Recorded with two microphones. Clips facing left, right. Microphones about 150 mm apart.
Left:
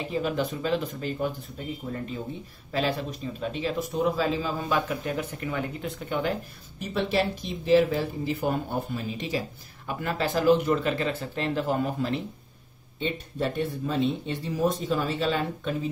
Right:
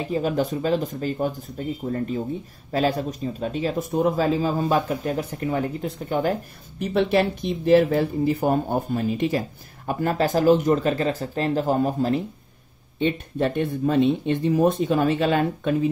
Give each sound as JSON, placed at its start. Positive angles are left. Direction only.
{"t": 0.1, "sound": "speech", "side_deg": -40}
{"t": 2.7, "sound": "a man's voice", "side_deg": -45}
{"t": 6.8, "sound": "a man's voice", "side_deg": -55}
{"t": 13.0, "sound": "speech", "side_deg": -50}